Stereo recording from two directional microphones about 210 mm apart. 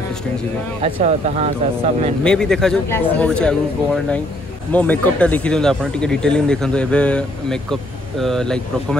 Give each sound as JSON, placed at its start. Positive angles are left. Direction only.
{"t": 0.8, "sound": "speech", "side_deg": -30}
{"t": 2.2, "sound": "speech", "side_deg": 5}